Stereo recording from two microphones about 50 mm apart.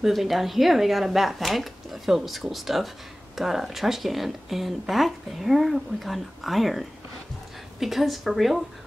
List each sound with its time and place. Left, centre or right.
0.0 s speech: centre